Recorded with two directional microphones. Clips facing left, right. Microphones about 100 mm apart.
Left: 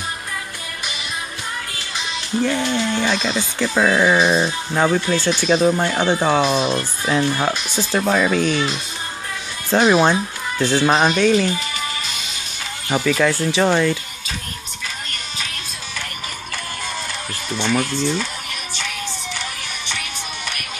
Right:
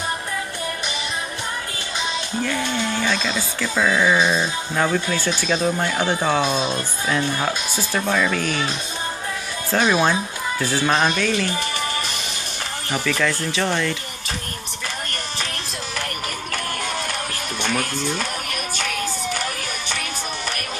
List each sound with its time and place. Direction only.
2.4 s speech: 20° left (ahead or behind)
9.7 s speech: 20° left (ahead or behind)
12.9 s speech: 30° left (ahead or behind)
17.6 s a sound: 55° right (ahead or behind)